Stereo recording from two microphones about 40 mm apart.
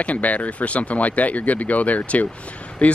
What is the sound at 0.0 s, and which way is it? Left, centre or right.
Speech, left.